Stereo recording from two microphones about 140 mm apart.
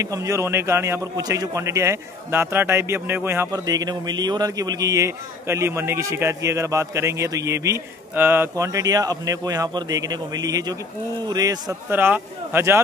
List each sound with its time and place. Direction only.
0.0 s a man's voice: 25° right (ahead or behind)
11.9 s speech: 15° right (ahead or behind)